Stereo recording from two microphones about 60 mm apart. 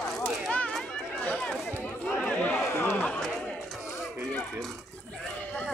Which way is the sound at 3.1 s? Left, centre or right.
Centre.